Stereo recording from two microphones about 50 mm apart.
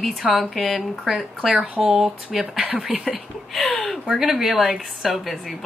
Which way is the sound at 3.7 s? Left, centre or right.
Centre.